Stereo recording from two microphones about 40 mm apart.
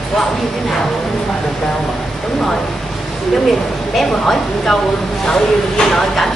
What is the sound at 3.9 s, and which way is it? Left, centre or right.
Speech, centre.